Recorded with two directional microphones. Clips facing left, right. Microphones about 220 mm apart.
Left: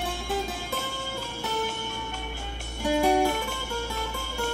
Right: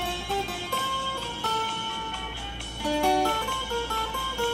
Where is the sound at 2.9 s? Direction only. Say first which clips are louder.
Left 2 dB; 15° left (ahead or behind).